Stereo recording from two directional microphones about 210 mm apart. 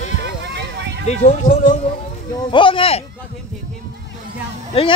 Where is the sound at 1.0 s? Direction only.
35° left (ahead or behind).